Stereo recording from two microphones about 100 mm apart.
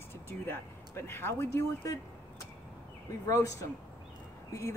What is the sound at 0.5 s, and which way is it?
Speech, 25° left (ahead or behind).